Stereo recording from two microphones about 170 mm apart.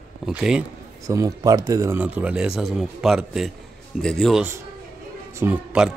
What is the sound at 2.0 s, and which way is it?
A man's voice, 5° right (ahead or behind).